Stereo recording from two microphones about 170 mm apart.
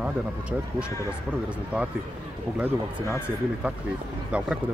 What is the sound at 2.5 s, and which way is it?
Speech, 5° right (ahead or behind).